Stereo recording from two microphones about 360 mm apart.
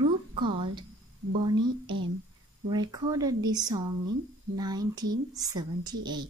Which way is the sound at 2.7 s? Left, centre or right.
Centre.